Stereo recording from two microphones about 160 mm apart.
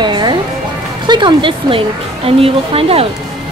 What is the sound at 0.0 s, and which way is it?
Music, 30° right (ahead or behind).